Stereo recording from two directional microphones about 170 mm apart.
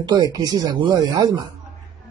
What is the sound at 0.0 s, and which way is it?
Speech, 20° right (ahead or behind).